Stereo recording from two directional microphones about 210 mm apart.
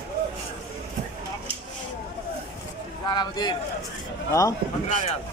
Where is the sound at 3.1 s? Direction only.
20° left (ahead or behind).